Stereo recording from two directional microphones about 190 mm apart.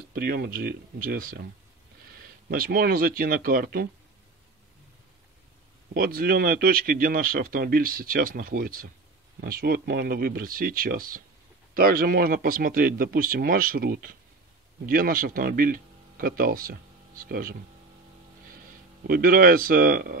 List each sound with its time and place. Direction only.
0.1 s speech: 50° right (ahead or behind)
2.5 s speech: 50° right (ahead or behind)
5.9 s speech: 50° right (ahead or behind)
19.0 s speech: 50° right (ahead or behind)